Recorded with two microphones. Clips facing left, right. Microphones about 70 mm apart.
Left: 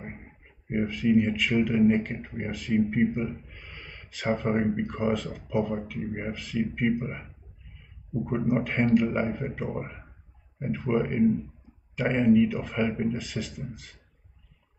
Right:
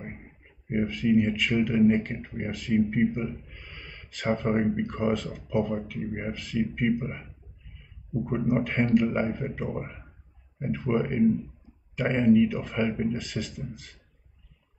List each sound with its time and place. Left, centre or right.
0.7 s speech: centre